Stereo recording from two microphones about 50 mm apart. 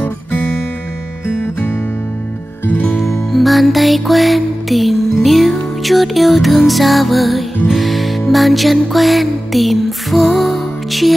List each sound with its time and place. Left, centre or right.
0.0 s guitar: left
1.2 s music: left
3.1 s music: centre